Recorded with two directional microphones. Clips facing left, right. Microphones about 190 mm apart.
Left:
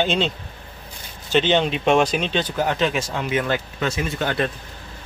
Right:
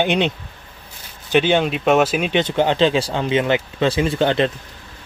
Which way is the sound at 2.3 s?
25° right (ahead or behind).